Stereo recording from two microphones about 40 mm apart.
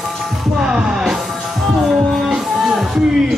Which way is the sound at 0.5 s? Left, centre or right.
Right.